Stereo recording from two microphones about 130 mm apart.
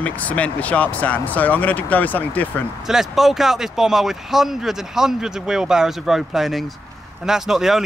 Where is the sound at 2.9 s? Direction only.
Centre (ahead or behind).